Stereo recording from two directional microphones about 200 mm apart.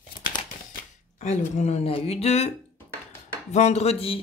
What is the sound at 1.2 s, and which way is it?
Speech, 35° left (ahead or behind).